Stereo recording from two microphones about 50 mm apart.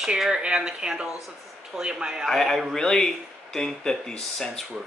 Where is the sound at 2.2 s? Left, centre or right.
Centre.